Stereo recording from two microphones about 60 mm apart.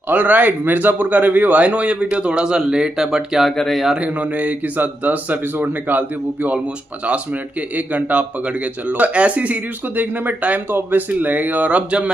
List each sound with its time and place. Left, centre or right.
0.1 s a man's voice: right; by 3.4 s centre
3.4 s speech: centre
3.9 s a man's voice: right
7.7 s a man's voice: right